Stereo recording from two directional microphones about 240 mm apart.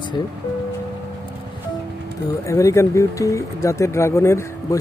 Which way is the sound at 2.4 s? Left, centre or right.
Centre.